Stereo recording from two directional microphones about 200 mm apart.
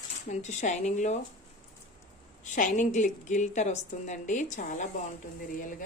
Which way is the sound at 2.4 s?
40° left (ahead or behind).